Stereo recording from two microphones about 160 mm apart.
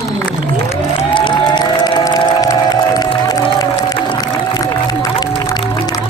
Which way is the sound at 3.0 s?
25° left (ahead or behind).